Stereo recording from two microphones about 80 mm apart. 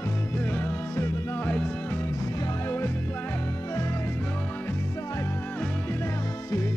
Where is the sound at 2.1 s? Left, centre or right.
Left.